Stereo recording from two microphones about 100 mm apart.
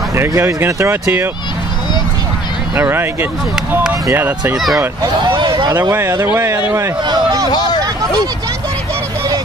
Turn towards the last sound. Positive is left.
turn(degrees=-40)  # may be behind; listen again after turning